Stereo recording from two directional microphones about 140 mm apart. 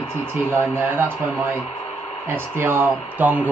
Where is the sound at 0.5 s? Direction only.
15° right (ahead or behind).